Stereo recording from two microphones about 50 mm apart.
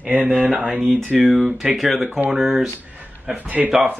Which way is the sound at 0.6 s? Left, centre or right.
Right.